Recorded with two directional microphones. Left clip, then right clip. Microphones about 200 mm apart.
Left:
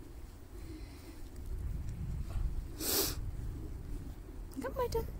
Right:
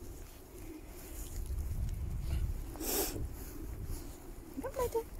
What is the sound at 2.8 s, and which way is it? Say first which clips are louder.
Dog: left 2 dB; 15° left (ahead or behind).